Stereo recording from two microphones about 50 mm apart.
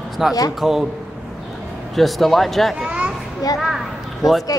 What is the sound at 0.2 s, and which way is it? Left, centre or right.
Speech, centre.